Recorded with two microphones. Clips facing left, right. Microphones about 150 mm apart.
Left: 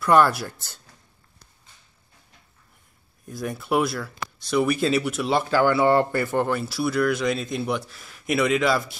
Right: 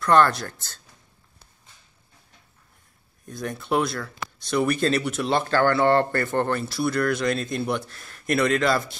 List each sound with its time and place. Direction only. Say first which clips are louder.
0.0 s speech: left 1 dB; 10° left (ahead or behind)
3.3 s speech: left 1 dB; 5° left (ahead or behind)